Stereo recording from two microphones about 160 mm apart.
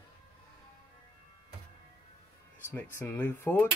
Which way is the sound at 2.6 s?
15° left (ahead or behind).